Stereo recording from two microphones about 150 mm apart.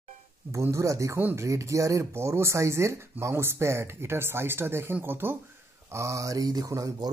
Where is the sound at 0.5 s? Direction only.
20° right (ahead or behind).